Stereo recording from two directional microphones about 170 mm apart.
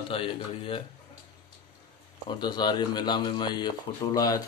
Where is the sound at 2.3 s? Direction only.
25° left (ahead or behind).